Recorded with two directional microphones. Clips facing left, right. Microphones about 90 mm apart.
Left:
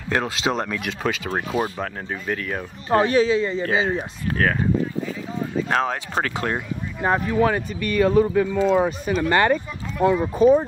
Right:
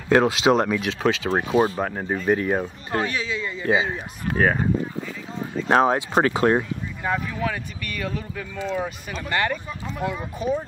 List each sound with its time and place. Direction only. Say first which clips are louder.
0.1 s speech: right 6 dB; 10° right (ahead or behind)
0.7 s speech: right 3 dB; centre (ahead or behind)
1.3 s speech: right 4 dB; 25° right (ahead or behind)
2.9 s speech: left 9 dB; 35° left (ahead or behind)
4.3 s speech: right 1 dB; 15° right (ahead or behind)
5.7 s speech: right 9 dB; 25° right (ahead or behind)
7.0 s speech: left 7 dB; 40° left (ahead or behind)